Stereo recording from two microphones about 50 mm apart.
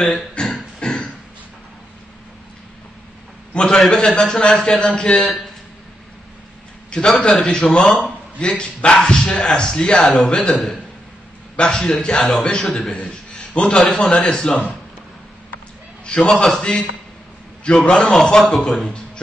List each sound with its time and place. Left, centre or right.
0.1 s speech: centre
0.8 s a sound: centre
3.5 s a man's voice: centre
6.9 s a man's voice: centre
8.5 s a man's voice: left
11.6 s a man's voice: centre
13.6 s a man's voice: centre
16.1 s a man's voice: centre
17.8 s a man's voice: centre
18.9 s a sound: centre